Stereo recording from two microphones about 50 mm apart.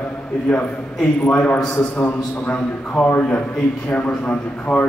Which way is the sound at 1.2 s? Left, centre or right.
Left.